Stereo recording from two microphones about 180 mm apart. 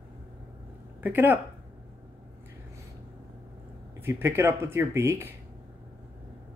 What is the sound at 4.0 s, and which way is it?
Speech, 15° right (ahead or behind).